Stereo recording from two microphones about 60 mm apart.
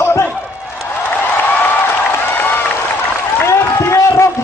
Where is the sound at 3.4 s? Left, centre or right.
Left.